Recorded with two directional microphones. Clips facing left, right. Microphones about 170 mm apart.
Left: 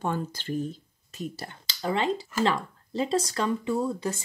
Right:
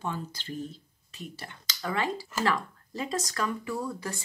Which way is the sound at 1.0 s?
40° left (ahead or behind).